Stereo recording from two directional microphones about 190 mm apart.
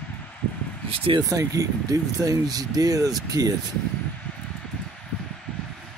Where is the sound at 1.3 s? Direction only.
15° right (ahead or behind).